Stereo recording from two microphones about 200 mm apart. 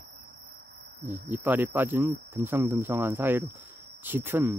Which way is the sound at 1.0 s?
40° right (ahead or behind).